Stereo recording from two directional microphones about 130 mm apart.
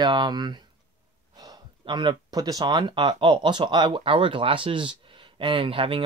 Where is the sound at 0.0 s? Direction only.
35° right (ahead or behind).